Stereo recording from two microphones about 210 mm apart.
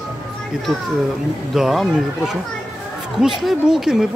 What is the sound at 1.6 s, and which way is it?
Speech, centre (ahead or behind).